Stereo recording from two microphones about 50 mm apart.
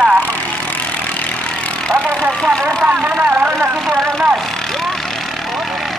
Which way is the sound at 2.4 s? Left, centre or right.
Centre.